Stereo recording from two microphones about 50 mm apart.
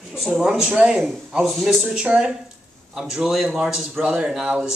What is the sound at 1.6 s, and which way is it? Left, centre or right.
Speech, centre.